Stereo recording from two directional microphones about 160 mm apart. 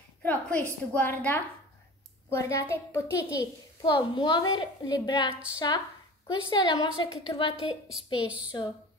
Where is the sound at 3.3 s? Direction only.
30° left (ahead or behind).